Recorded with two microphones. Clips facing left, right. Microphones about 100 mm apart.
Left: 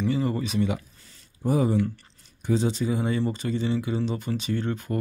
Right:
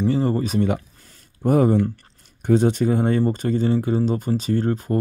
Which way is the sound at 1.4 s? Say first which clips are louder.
Right 6 dB; 55° right (ahead or behind).